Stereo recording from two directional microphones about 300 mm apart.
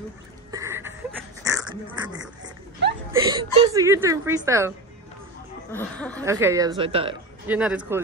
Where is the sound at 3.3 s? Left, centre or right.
Centre.